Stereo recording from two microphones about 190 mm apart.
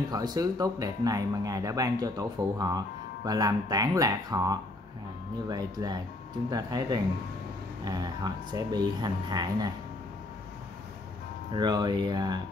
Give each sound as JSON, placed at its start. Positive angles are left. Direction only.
{"t": 0.1, "sound": "speech", "side_deg": -20}
{"t": 11.5, "sound": "speech", "side_deg": -20}